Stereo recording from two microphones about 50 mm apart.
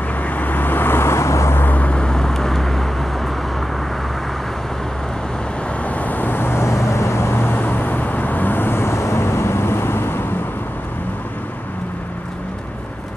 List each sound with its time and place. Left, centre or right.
0.2 s vehicle: left
1.6 s vehicle: left
2.0 s vehicle: centre
5.9 s vehicle: left
6.6 s vehicle: left